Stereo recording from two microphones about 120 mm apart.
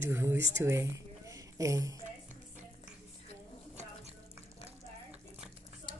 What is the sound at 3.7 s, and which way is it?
Drip, 65° right (ahead or behind).